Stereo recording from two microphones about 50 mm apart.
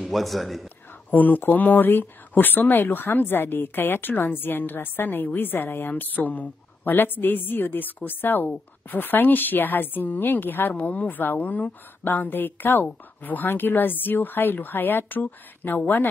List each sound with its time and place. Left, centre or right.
0.1 s a man's voice: centre
1.1 s speech: left